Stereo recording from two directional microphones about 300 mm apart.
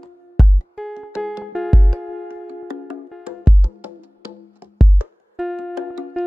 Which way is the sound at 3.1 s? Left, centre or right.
Centre.